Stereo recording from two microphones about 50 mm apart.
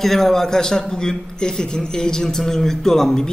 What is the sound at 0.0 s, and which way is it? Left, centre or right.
A man's voice, centre.